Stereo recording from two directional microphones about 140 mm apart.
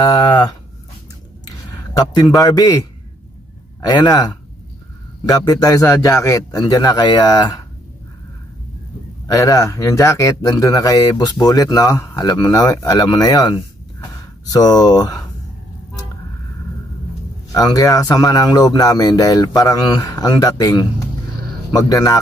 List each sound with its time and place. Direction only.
0.0 s speech: 30° left (ahead or behind)
1.7 s a sound: 30° left (ahead or behind)
2.3 s speech: 25° left (ahead or behind)
9.3 s speech: 25° left (ahead or behind)
17.5 s speech: 25° left (ahead or behind)